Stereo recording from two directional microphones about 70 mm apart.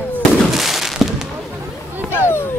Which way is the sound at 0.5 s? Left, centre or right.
Centre.